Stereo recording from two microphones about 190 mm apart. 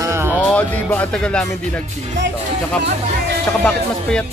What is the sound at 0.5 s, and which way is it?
Music, 5° left (ahead or behind).